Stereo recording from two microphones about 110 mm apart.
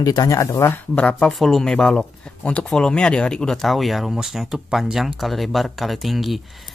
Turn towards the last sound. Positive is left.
turn(degrees=0)  # may be behind; listen again after turning